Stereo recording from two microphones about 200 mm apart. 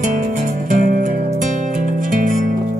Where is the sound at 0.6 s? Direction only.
45° right (ahead or behind).